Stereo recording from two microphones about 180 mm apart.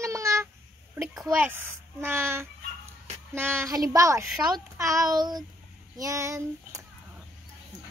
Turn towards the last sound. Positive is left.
turn(degrees=-15)  # may be behind; listen again after turning